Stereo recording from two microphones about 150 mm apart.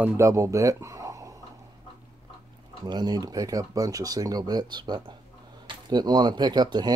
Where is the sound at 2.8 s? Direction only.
30° right (ahead or behind).